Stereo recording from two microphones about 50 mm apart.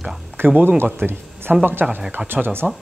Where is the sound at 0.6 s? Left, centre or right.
Right.